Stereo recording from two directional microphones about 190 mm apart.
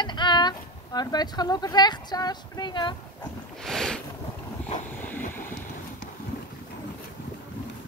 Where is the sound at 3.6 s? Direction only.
5° left (ahead or behind).